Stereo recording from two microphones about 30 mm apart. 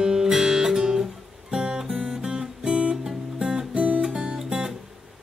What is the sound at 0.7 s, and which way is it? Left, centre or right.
Guitar, right.